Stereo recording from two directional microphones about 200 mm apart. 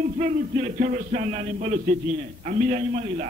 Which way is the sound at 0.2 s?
35° right (ahead or behind).